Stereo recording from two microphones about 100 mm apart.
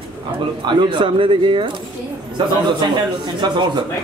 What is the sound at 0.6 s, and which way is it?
A man's voice, 50° right (ahead or behind).